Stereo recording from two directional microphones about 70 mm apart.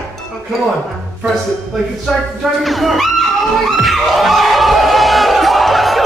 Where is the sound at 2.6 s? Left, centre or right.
Centre.